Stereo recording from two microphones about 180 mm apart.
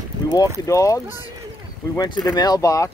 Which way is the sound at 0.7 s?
15° left (ahead or behind).